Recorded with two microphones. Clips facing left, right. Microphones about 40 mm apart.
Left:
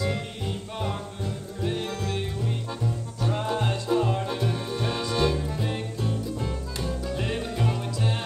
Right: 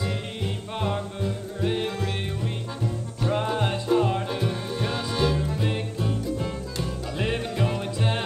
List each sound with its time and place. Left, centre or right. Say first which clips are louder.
0.7 s music: right 6 dB; centre
1.6 s music: right 3 dB; right
3.2 s music: right 3 dB; centre
4.3 s music: even; centre
5.5 s music: right 2 dB; right
5.9 s music: right 2 dB; centre
7.1 s music: right 4 dB; right